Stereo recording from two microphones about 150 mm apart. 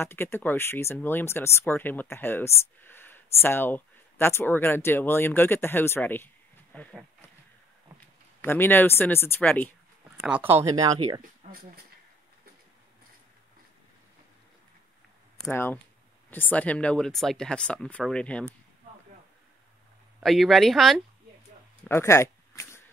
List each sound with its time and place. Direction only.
0.0 s speech: 15° left (ahead or behind)
8.4 s speech: 15° left (ahead or behind)
10.2 s speech: 10° right (ahead or behind)
10.7 s speech: 25° right (ahead or behind)
15.5 s speech: 15° left (ahead or behind)
20.2 s speech: centre (ahead or behind)
21.8 s a sound: 15° left (ahead or behind)